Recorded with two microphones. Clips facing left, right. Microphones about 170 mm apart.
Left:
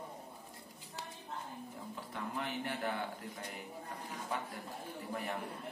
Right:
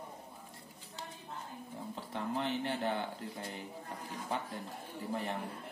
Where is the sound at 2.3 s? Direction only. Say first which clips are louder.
Right 4 dB; 25° right (ahead or behind).